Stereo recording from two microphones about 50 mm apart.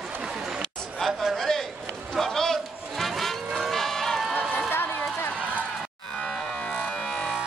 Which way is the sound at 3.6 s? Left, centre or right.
Centre.